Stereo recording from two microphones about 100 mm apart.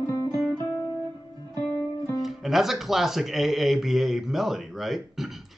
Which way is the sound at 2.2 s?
Centre (ahead or behind).